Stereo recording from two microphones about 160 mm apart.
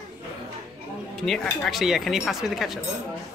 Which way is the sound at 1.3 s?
Centre (ahead or behind).